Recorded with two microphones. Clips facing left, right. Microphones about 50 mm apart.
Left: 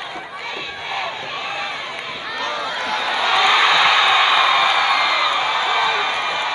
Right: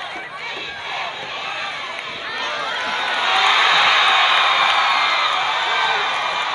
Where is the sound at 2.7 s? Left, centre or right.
Right.